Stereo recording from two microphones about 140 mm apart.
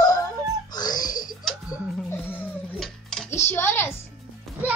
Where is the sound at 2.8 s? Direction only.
Centre (ahead or behind).